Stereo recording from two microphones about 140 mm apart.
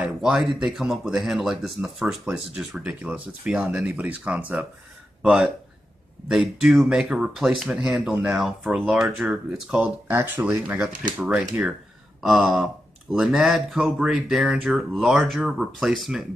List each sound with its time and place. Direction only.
0.0 s speech: 5° right (ahead or behind)